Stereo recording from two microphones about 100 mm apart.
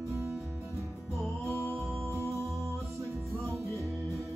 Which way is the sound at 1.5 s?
25° right (ahead or behind).